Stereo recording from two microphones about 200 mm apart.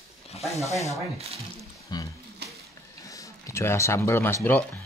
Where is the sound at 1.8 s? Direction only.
20° left (ahead or behind).